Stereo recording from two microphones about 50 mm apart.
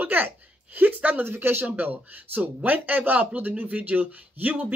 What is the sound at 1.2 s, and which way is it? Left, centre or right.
Speech, right.